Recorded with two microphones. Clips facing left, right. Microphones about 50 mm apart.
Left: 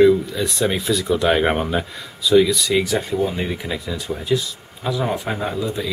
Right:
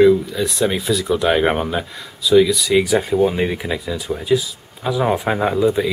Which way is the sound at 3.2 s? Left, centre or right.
Right.